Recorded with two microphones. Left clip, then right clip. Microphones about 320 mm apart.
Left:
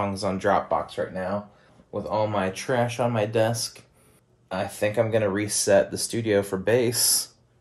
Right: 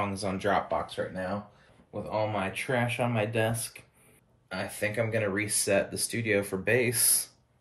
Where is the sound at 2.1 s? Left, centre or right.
Centre.